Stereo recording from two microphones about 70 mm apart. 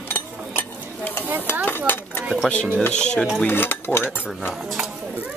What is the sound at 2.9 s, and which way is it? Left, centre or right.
Speech, centre.